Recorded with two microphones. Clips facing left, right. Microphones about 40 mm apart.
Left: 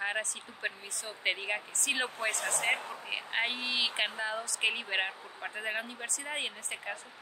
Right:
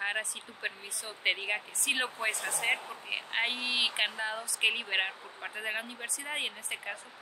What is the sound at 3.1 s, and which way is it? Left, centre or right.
Speech, centre.